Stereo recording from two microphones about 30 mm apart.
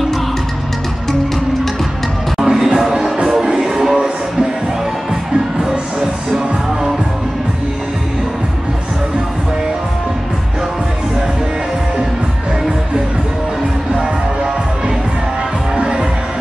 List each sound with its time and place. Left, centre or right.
2.3 s music: centre
5.6 s music: centre
15.7 s music: right